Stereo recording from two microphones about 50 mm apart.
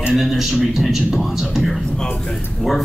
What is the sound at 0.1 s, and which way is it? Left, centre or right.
Speech, centre.